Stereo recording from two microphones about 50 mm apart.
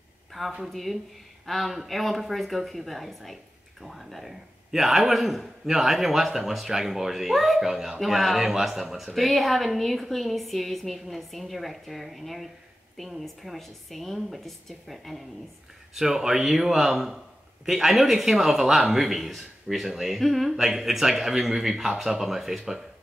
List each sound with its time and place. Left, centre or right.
0.4 s a man's voice: centre